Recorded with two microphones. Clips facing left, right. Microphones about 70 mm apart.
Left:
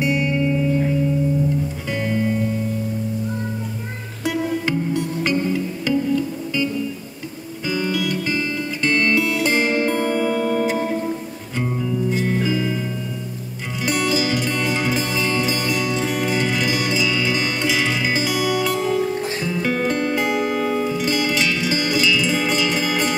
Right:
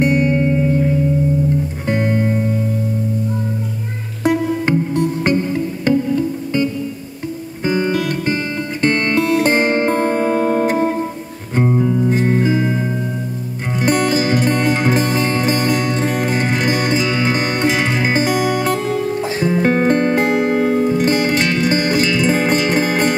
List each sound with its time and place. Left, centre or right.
0.0 s music: right
1.9 s music: right
4.2 s music: right